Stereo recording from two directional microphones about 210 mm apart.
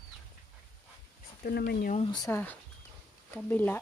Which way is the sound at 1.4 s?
50° left (ahead or behind).